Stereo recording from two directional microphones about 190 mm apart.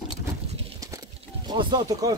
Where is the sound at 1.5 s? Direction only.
25° right (ahead or behind).